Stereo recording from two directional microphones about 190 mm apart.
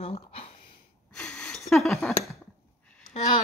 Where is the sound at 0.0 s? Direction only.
30° left (ahead or behind).